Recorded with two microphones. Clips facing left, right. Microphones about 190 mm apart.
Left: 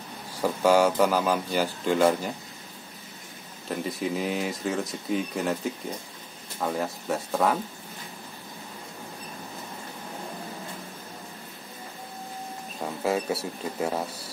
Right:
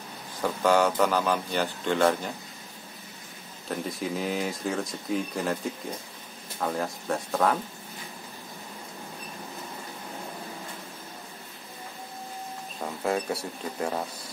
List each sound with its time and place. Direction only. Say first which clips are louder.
0.4 s speech: left 2 dB; 10° left (ahead or behind)
3.6 s speech: left 2 dB; centre (ahead or behind)
6.6 s speech: left 1 dB; 5° left (ahead or behind)
12.8 s speech: left 2 dB; 5° left (ahead or behind)